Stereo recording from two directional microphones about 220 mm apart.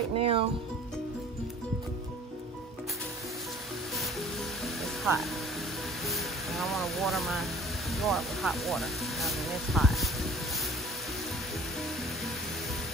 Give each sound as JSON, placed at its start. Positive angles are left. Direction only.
{"t": 0.2, "sound": "speech", "side_deg": -25}
{"t": 4.8, "sound": "music", "side_deg": 0}
{"t": 7.9, "sound": "speech", "side_deg": 0}